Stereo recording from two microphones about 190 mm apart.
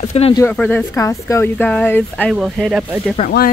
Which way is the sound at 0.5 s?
10° left (ahead or behind).